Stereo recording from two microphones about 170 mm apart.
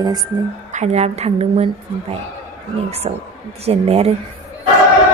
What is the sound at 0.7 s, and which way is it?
A woman's voice, 40° right (ahead or behind).